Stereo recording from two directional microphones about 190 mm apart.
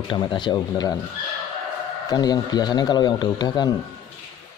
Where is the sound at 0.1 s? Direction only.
25° left (ahead or behind).